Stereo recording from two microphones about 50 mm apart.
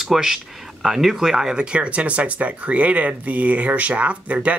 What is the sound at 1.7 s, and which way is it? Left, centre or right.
Speech, right.